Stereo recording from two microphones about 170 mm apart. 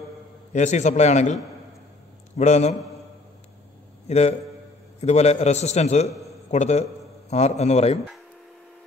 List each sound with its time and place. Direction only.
0.5 s a man's voice: 45° left (ahead or behind)
4.1 s a man's voice: 40° left (ahead or behind)